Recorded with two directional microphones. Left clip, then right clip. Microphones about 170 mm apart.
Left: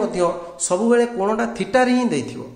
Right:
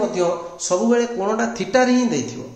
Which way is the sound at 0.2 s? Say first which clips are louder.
Left 1 dB; 50° left (ahead or behind).